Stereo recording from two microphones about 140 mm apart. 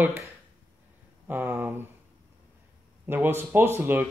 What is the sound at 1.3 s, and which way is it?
Speech, 15° right (ahead or behind).